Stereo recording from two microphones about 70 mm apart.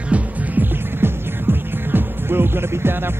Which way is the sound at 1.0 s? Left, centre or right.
Right.